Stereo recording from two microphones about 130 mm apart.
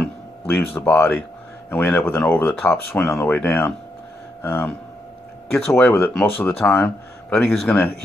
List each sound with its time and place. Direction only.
0.0 s speech: 10° left (ahead or behind)
7.6 s speech: 15° left (ahead or behind)